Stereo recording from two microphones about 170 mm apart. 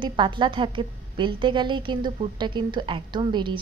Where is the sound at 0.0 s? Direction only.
30° right (ahead or behind).